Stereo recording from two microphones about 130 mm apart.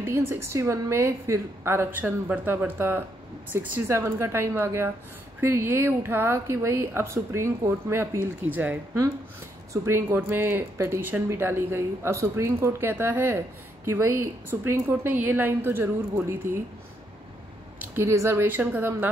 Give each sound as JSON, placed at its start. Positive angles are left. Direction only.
{"t": 0.0, "sound": "a woman's voice", "side_deg": -20}
{"t": 17.7, "sound": "a woman's voice", "side_deg": -20}